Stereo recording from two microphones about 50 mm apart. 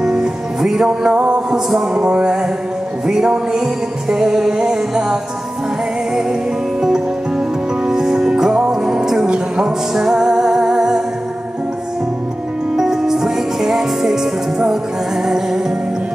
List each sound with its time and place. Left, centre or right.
0.0 s music: centre
0.8 s music: centre
1.5 s music: centre
6.8 s music: centre
12.7 s music: centre